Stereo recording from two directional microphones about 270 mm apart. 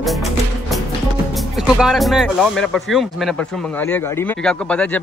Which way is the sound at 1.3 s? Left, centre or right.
Centre.